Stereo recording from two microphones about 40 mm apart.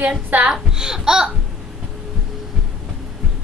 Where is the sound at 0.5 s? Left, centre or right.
Centre.